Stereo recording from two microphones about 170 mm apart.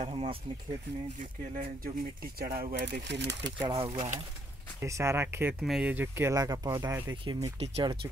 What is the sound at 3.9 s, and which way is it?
Speech, 45° right (ahead or behind).